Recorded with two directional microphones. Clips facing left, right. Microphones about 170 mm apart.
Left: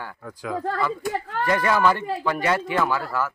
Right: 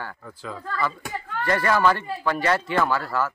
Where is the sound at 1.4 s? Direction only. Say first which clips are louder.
Even; 10° left (ahead or behind).